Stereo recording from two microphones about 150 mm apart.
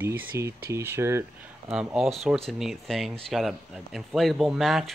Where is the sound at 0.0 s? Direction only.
15° right (ahead or behind).